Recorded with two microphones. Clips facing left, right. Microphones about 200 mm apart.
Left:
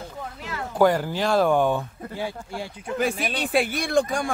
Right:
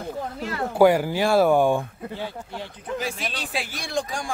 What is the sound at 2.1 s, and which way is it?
Speech, 10° left (ahead or behind).